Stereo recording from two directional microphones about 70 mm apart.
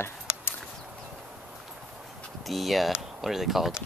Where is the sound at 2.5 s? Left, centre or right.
Centre.